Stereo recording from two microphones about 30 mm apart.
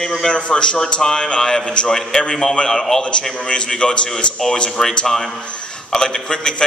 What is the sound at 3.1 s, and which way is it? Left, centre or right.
Speech, left.